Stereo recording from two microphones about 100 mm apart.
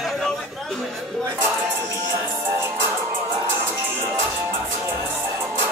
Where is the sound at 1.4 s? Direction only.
25° right (ahead or behind).